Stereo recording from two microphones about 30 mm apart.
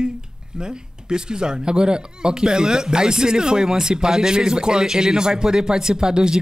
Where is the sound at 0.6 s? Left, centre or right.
Right.